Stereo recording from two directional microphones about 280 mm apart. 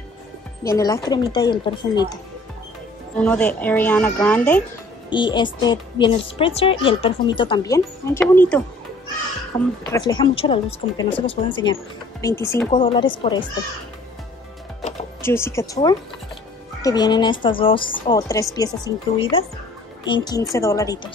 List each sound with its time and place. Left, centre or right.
0.7 s speech: centre
3.2 s a woman's voice: centre
5.1 s speech: centre
9.8 s speech: centre
14.8 s music: centre
16.8 s speech: centre